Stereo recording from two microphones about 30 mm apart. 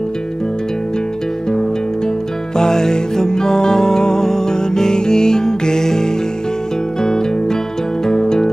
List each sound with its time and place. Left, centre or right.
2.5 s music: centre